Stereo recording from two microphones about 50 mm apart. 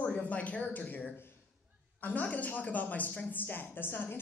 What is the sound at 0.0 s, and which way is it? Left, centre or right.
A man's voice, left.